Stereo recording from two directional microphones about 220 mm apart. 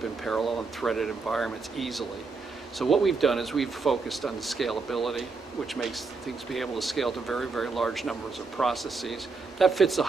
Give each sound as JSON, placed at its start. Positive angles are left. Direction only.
{"t": 0.2, "sound": "speech", "side_deg": 0}